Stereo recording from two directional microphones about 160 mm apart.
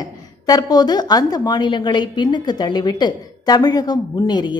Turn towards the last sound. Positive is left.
turn(degrees=25)  # may be behind; listen again after turning